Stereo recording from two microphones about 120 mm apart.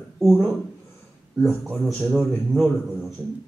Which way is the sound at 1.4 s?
Centre (ahead or behind).